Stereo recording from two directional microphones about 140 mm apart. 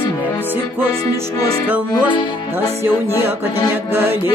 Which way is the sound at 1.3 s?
25° left (ahead or behind).